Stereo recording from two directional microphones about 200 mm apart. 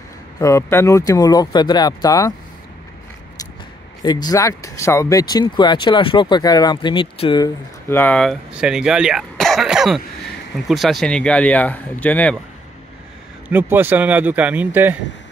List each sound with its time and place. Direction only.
0.4 s speech: 15° left (ahead or behind)
4.0 s speech: 20° left (ahead or behind)
13.5 s a man's voice: 10° right (ahead or behind)